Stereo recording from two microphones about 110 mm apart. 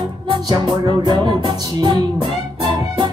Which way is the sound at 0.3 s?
45° right (ahead or behind).